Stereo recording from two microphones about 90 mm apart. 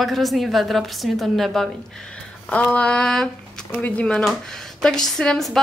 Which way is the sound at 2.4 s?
15° left (ahead or behind).